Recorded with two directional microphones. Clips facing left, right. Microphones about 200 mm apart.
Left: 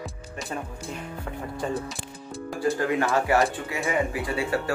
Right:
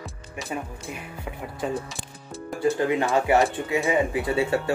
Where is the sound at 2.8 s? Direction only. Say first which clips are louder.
Right 2 dB; 20° right (ahead or behind).